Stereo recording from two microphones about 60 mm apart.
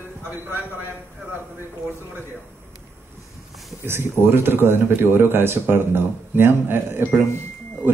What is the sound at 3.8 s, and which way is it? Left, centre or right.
Speech, right.